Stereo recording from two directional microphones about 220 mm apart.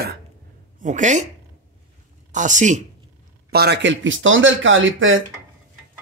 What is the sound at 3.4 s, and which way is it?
Speech, 45° right (ahead or behind).